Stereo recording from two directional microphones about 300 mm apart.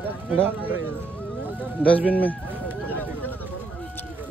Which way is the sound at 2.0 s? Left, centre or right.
Centre.